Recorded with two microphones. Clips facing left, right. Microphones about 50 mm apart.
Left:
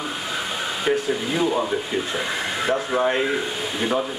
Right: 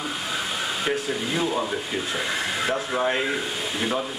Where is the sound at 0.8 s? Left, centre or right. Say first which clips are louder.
Left 6 dB; centre.